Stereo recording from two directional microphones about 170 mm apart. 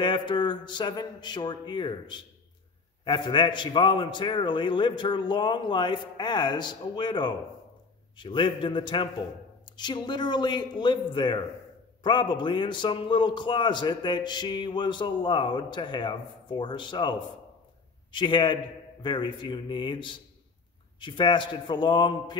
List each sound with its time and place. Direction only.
0.0 s a man's voice: 25° left (ahead or behind)